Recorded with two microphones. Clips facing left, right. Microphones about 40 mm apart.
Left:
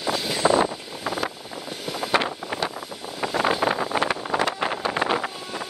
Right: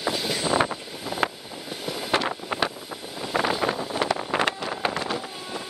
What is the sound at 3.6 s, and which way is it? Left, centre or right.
Vehicle, left.